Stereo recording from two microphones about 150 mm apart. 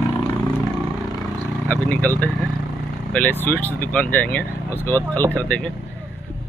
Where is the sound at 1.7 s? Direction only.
10° left (ahead or behind).